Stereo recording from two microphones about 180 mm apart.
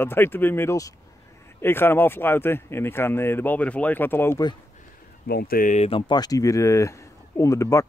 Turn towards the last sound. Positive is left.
turn(degrees=15)  # may be behind; listen again after turning